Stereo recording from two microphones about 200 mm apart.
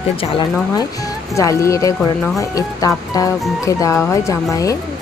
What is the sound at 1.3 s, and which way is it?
Speech, 15° left (ahead or behind).